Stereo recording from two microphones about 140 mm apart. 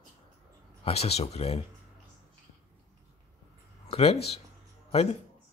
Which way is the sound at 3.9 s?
45° left (ahead or behind).